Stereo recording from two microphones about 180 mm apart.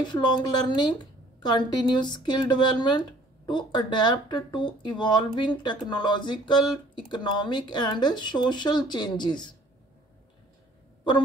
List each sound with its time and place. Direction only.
0.1 s speech: 25° left (ahead or behind)